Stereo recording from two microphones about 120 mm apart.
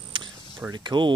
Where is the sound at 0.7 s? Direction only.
35° right (ahead or behind).